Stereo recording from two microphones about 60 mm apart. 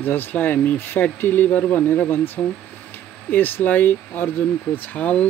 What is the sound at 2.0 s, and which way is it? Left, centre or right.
Speech, left.